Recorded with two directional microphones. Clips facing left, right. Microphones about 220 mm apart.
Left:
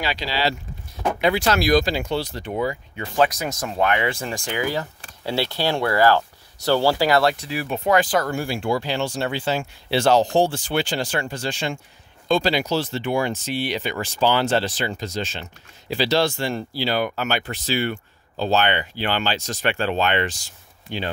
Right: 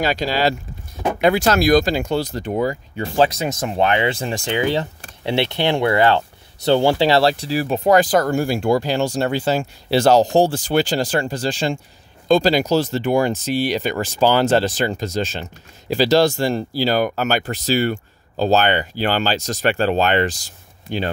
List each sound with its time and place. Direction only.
0.0 s speech: 45° right (ahead or behind)
3.0 s speech: 25° right (ahead or behind)